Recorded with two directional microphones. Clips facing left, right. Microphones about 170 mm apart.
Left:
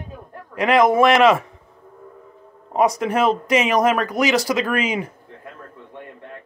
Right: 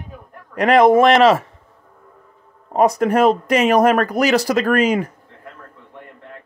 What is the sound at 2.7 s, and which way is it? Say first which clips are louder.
Speech: right 3 dB; 45° right (ahead or behind).